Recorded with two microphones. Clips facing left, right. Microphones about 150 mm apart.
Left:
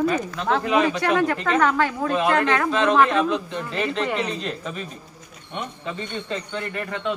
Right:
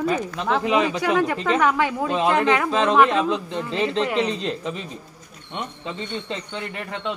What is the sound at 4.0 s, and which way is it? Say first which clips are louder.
Speech: right 5 dB; 5° left (ahead or behind).